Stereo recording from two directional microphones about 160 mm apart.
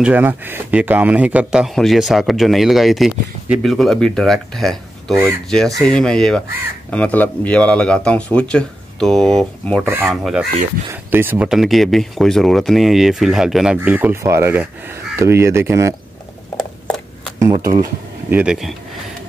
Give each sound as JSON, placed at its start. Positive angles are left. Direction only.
{"t": 0.0, "sound": "speech", "side_deg": -10}
{"t": 9.8, "sound": "speech", "side_deg": -15}
{"t": 10.2, "sound": "speech", "side_deg": 0}
{"t": 11.1, "sound": "speech", "side_deg": -10}
{"t": 17.6, "sound": "speech", "side_deg": -60}
{"t": 18.3, "sound": "speech", "side_deg": -5}